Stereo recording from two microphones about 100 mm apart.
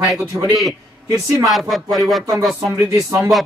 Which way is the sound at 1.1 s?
Centre (ahead or behind).